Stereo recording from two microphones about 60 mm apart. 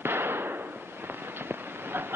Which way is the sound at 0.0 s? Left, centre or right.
Right.